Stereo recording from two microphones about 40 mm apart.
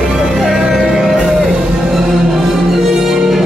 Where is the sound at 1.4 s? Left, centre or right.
Centre.